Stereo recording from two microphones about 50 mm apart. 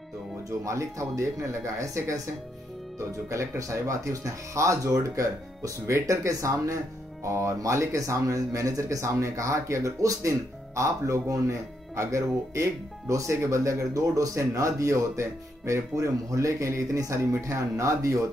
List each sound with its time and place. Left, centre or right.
0.7 s speech: right
3.3 s speech: right